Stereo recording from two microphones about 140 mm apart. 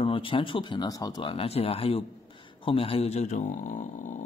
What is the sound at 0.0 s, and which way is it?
A man's voice, 40° left (ahead or behind).